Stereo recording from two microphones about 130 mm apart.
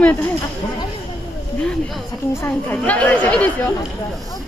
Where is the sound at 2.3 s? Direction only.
20° left (ahead or behind).